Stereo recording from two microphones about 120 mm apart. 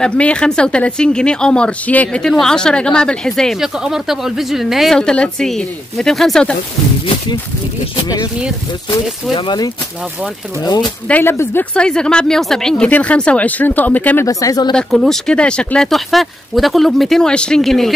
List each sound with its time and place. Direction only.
0.0 s speech: 10° left (ahead or behind)
9.3 s speech: 40° left (ahead or behind)
11.1 s speech: 15° left (ahead or behind)
14.2 s speech: 30° left (ahead or behind)
14.7 s speech: 5° left (ahead or behind)